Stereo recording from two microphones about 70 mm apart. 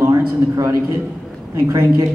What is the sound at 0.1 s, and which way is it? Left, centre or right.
A man's voice, right.